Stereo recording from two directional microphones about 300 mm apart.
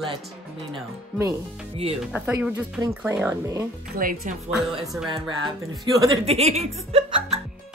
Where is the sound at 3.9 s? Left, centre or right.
Right.